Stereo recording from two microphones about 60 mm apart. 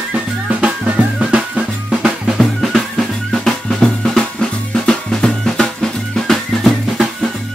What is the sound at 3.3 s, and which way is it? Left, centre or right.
Drum kit, centre.